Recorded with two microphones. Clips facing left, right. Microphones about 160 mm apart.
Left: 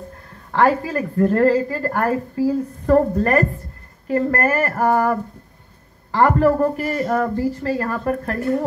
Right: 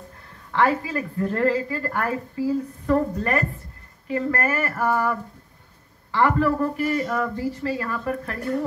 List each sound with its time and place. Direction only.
0.5 s a woman's voice: 45° left (ahead or behind)